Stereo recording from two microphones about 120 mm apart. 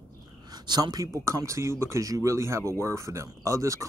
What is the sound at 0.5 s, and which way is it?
Speech, 35° right (ahead or behind).